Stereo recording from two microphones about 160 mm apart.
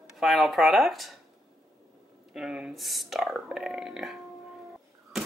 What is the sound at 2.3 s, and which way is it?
Speech, 5° right (ahead or behind).